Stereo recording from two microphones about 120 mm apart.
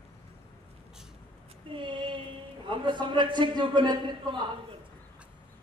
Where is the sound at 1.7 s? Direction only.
45° right (ahead or behind).